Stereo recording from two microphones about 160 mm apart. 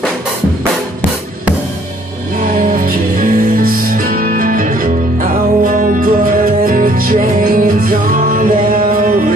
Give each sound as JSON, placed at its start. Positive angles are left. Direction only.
{"t": 2.4, "sound": "music", "side_deg": -60}